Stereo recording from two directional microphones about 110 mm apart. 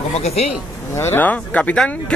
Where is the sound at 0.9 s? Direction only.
20° left (ahead or behind).